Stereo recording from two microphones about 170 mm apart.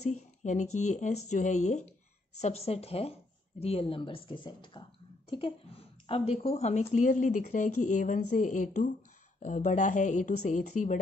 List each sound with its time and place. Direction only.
0.0 s speech: 40° left (ahead or behind)
6.0 s speech: 35° left (ahead or behind)